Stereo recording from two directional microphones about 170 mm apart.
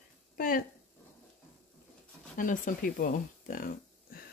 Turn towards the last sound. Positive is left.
turn(degrees=60)  # may be behind; listen again after turning